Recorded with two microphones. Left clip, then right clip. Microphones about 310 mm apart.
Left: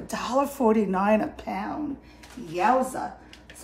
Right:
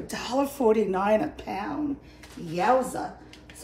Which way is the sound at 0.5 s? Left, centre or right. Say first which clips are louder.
Even; left.